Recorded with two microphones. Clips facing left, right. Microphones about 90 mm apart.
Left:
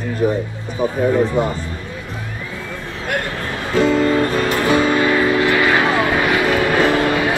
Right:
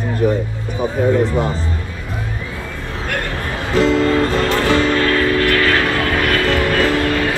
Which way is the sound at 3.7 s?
10° left (ahead or behind).